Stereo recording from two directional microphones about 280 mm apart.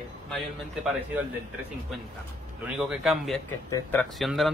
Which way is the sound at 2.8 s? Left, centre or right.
Centre.